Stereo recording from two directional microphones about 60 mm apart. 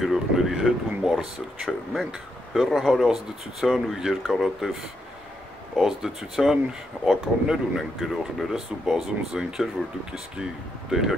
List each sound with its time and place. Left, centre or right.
0.0 s a sound: centre
2.5 s speech: centre
5.8 s speech: centre